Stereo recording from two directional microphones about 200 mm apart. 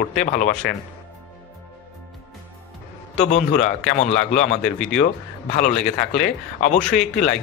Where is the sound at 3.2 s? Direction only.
35° left (ahead or behind).